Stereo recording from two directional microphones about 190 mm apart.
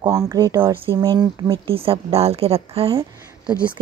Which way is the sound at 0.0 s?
15° right (ahead or behind).